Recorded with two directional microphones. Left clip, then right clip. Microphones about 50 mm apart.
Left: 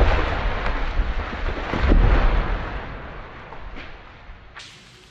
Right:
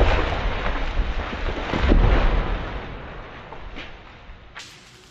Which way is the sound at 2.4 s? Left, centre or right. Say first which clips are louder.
Left 1 dB; right.